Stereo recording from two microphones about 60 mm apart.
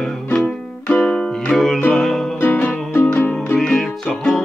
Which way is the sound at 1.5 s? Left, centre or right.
Centre.